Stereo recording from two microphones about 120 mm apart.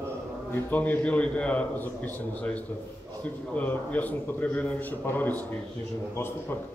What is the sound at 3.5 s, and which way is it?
A man's voice, 15° left (ahead or behind).